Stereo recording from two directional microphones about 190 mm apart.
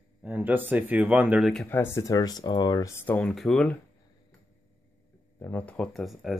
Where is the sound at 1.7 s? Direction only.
15° left (ahead or behind).